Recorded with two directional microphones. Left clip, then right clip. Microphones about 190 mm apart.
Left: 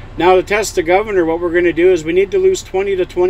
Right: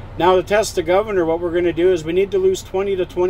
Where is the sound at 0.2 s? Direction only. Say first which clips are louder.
Left 3 dB; 10° left (ahead or behind).